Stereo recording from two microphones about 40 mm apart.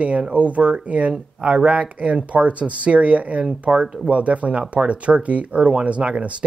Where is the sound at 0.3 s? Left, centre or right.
Right.